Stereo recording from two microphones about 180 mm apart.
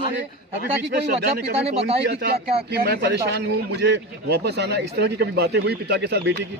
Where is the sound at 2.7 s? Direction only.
60° right (ahead or behind).